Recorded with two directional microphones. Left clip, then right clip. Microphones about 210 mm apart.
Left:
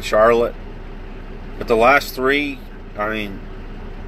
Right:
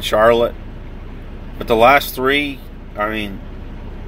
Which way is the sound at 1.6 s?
25° right (ahead or behind).